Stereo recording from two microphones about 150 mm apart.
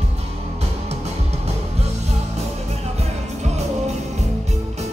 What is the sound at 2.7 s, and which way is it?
Music, 45° right (ahead or behind).